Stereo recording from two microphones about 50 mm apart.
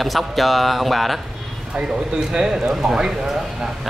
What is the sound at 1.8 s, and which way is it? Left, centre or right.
Speech, centre.